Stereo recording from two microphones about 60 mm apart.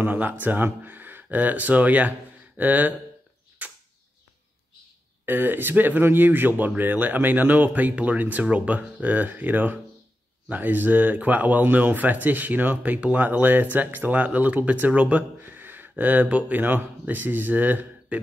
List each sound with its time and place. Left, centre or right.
0.0 s speech: right
3.6 s a sound: right
5.2 s speech: right